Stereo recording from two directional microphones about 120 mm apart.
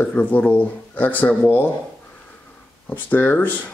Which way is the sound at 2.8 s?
15° left (ahead or behind).